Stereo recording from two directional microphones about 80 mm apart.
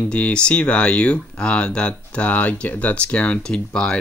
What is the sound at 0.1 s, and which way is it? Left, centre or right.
Speech, centre.